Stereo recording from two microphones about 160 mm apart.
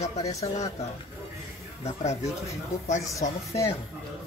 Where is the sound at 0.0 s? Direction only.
40° left (ahead or behind).